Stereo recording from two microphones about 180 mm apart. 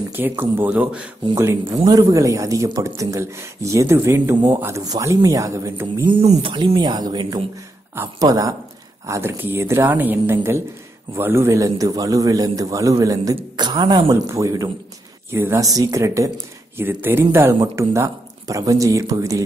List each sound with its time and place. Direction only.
0.1 s speech: 10° right (ahead or behind)
6.0 s a man's voice: 30° right (ahead or behind)